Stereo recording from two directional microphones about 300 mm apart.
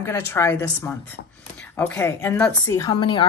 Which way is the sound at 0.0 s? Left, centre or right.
Centre.